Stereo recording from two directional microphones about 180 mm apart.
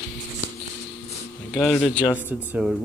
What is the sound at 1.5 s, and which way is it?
Speech, centre (ahead or behind).